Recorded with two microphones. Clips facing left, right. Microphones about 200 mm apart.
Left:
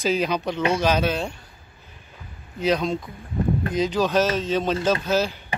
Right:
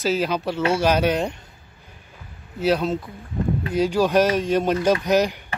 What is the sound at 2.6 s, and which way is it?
Speech, 5° right (ahead or behind).